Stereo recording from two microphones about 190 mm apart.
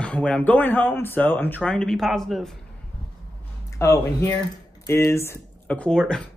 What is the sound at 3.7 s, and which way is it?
A man's voice, 15° left (ahead or behind).